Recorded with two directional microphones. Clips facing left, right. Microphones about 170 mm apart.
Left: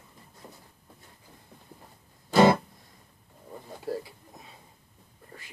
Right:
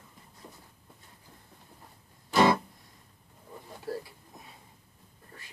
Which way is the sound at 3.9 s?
15° left (ahead or behind).